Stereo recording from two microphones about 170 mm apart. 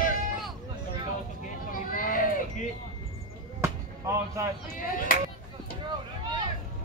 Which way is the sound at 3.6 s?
15° right (ahead or behind).